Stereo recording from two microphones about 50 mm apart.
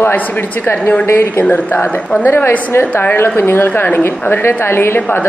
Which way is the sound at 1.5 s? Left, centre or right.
Left.